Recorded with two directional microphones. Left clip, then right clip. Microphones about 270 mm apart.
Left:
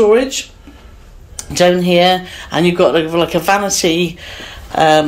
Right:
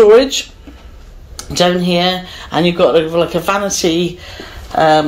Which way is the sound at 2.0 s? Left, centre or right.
Centre.